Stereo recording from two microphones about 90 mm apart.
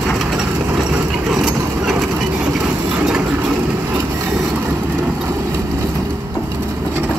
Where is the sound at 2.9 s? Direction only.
10° right (ahead or behind).